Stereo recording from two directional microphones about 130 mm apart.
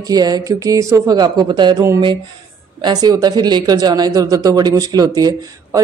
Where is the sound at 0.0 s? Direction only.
30° right (ahead or behind).